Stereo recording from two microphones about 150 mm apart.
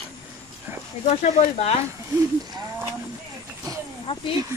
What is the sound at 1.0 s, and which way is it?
Speech, 50° left (ahead or behind).